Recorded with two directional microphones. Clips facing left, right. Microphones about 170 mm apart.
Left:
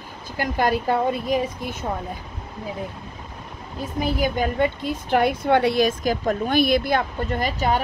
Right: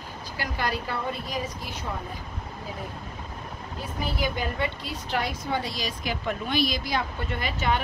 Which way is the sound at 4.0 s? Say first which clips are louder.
Left 7 dB; 45° left (ahead or behind).